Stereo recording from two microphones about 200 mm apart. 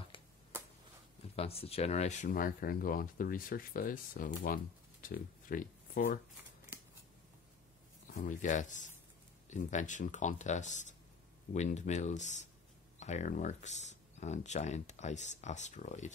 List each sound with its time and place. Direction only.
1.3 s speech: 30° left (ahead or behind)
8.1 s speech: 40° left (ahead or behind)